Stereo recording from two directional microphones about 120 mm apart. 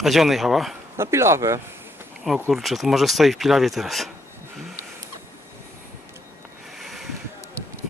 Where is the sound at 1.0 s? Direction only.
20° right (ahead or behind).